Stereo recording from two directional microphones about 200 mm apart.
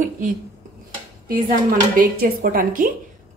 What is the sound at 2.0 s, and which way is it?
Speech, 45° right (ahead or behind).